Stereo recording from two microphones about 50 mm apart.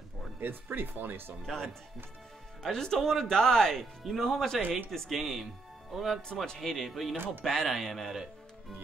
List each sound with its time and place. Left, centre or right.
0.4 s speech: right
1.4 s speech: centre
4.6 s speech: right
4.9 s speech: centre
6.4 s speech: centre
6.7 s speech: centre